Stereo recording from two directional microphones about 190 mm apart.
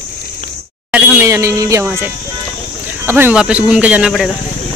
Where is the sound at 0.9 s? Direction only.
5° right (ahead or behind).